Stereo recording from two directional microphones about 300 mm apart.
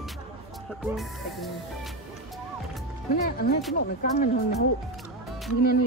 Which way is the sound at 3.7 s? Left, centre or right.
Left.